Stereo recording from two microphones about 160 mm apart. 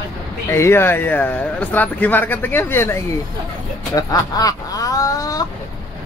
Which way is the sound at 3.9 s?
25° left (ahead or behind).